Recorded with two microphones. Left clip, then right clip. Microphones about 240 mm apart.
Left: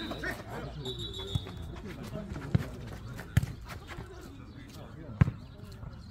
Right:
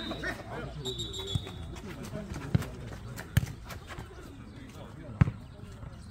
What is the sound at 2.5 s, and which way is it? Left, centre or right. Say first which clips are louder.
Clip-clop: right 1 dB; centre.